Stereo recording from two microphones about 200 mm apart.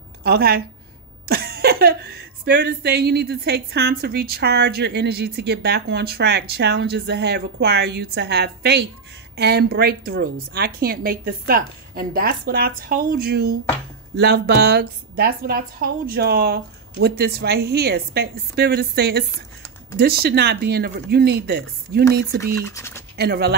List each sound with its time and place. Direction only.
0.2 s a woman's voice: 50° right (ahead or behind)
22.7 s speech: 15° left (ahead or behind)
23.1 s speech: 50° right (ahead or behind)